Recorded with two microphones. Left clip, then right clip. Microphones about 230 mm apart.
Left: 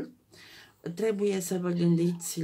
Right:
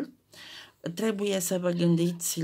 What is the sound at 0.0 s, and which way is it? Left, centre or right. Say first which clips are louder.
Speech: right 3 dB; right.